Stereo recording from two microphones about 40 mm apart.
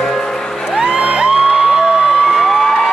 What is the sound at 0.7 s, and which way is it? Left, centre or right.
Music, right.